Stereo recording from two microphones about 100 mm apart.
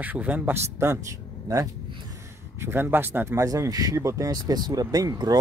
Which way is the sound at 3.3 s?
35° right (ahead or behind).